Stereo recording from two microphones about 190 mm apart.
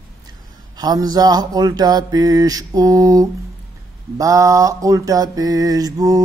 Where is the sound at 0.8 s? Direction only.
20° right (ahead or behind).